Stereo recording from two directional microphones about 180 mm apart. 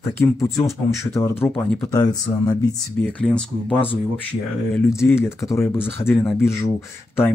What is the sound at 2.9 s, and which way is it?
Speech, 10° left (ahead or behind).